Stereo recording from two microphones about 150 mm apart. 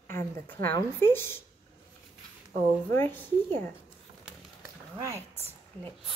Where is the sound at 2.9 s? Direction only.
15° left (ahead or behind).